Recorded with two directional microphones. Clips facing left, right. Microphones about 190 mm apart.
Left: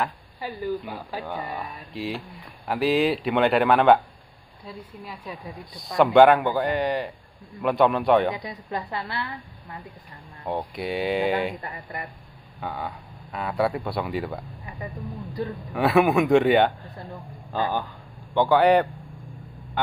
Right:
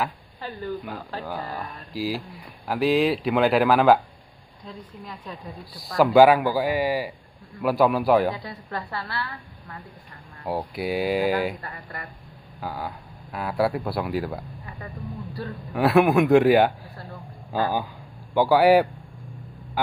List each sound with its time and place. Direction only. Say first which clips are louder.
0.4 s a woman's voice: left 2 dB; 10° left (ahead or behind)
8.3 s a woman's voice: left 1 dB; 15° left (ahead or behind)
10.4 s speech: right 1 dB; 5° right (ahead or behind)
11.6 s speech: left 2 dB; 20° left (ahead or behind)
12.5 s speech: even; centre (ahead or behind)
14.7 s a sound: left 4 dB; 20° left (ahead or behind)
15.4 s a woman's voice: left 5 dB; 15° left (ahead or behind)
15.7 s speech: right 1 dB; centre (ahead or behind)
18.3 s a man's voice: right 1 dB; 5° right (ahead or behind)